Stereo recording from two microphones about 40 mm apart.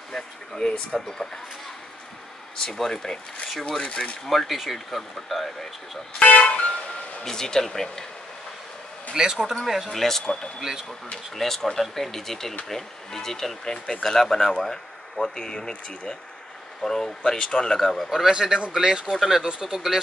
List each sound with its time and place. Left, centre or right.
0.1 s speech: left
2.5 s speech: centre
3.8 s speech: left
4.3 s speech: centre
6.2 s music: left
7.2 s speech: centre
9.1 s speech: centre
9.9 s speech: centre
10.6 s speech: centre
11.3 s speech: centre
18.3 s speech: centre